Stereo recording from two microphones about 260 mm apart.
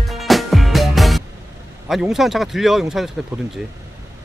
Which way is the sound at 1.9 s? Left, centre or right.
Centre.